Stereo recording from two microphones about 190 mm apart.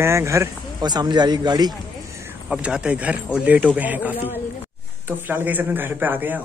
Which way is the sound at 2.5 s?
5° right (ahead or behind).